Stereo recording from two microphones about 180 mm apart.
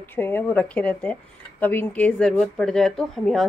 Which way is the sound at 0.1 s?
10° left (ahead or behind).